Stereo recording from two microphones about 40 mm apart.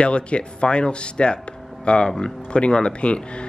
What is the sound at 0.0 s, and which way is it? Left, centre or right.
Speech, left.